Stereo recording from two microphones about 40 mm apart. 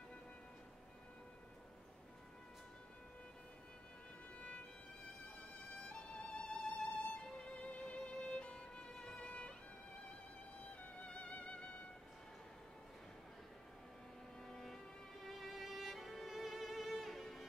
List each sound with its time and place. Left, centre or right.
4.4 s music: left
5.9 s music: left
11.1 s music: left
14.4 s vehicle: centre
15.2 s music: centre